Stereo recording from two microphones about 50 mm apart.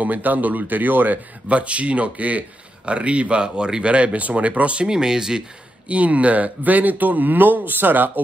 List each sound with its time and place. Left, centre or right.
0.0 s speech: right
4.8 s speech: centre
5.9 s speech: right